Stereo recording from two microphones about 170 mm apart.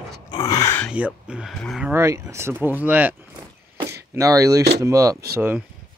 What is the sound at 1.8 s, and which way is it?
Speech, 15° right (ahead or behind).